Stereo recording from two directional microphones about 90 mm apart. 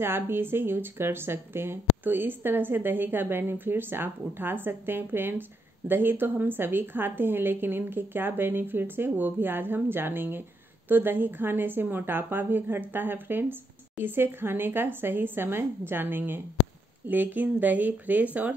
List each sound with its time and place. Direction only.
0.0 s a woman's voice: 25° right (ahead or behind)